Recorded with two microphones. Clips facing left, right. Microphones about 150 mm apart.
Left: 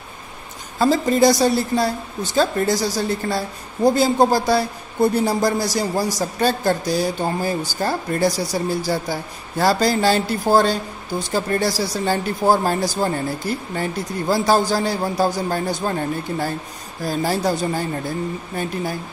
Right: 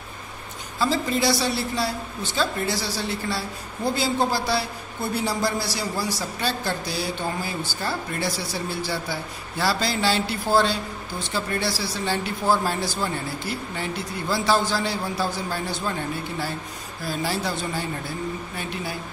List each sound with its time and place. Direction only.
0.7 s a woman's voice: 45° left (ahead or behind)